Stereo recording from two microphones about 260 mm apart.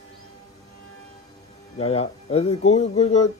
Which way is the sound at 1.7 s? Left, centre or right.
Left.